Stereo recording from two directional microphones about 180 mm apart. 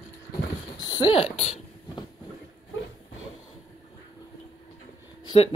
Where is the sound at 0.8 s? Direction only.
25° left (ahead or behind).